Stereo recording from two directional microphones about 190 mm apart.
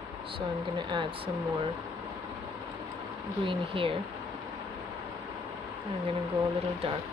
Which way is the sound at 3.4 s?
30° right (ahead or behind).